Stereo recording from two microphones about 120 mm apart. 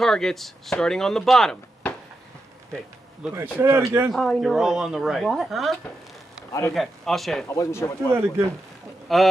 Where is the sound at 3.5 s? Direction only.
20° right (ahead or behind).